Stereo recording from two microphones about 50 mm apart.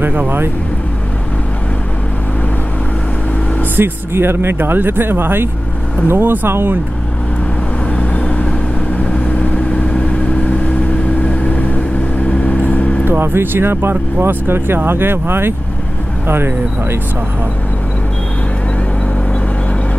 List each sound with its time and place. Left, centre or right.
0.0 s speech: right
3.7 s speech: right
7.9 s vehicle: left
12.3 s vehicle: left
13.0 s speech: right